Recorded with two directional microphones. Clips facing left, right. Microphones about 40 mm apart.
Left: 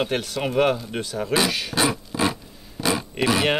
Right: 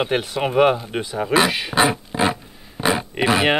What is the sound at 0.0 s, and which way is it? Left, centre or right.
Speech, right.